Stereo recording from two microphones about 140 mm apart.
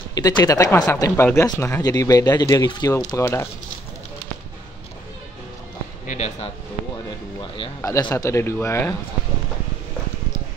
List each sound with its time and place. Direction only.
0.1 s speech: 25° left (ahead or behind)
6.0 s speech: 55° left (ahead or behind)
7.8 s speech: 25° left (ahead or behind)